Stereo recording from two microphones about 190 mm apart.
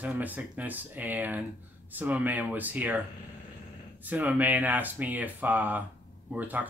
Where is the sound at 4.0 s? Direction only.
10° right (ahead or behind).